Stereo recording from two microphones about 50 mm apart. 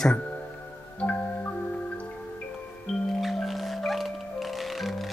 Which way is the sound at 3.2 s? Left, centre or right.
Centre.